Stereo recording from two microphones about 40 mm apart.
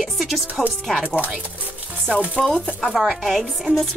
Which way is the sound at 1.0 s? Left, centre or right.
Right.